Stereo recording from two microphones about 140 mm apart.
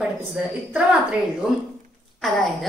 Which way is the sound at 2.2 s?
Centre (ahead or behind).